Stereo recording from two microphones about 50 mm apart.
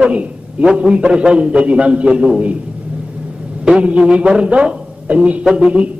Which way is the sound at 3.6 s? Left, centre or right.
Right.